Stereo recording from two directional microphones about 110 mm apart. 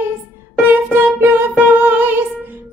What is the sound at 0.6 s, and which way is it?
Music, 20° right (ahead or behind).